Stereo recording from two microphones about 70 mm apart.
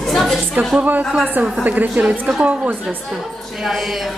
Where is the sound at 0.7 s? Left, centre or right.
Right.